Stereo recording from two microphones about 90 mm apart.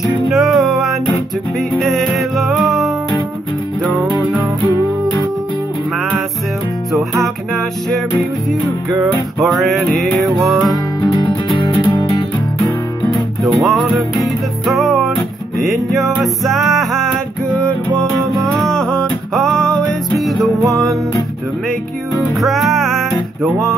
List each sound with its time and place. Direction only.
0.3 s music: centre (ahead or behind)
6.9 s music: centre (ahead or behind)
9.4 s music: centre (ahead or behind)
11.0 s music: 50° left (ahead or behind)
13.4 s music: centre (ahead or behind)
22.4 s music: centre (ahead or behind)